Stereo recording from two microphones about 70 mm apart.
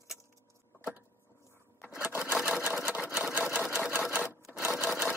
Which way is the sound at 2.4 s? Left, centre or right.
Centre.